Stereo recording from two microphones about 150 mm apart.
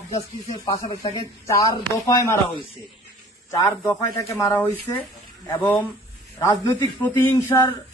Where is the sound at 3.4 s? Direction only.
20° left (ahead or behind).